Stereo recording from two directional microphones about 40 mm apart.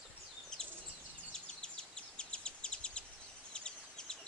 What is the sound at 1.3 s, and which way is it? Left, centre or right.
Bird, left.